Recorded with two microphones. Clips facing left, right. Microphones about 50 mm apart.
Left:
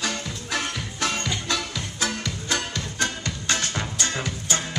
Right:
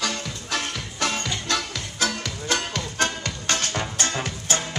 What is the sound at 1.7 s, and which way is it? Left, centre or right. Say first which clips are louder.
Music: right 1 dB; right.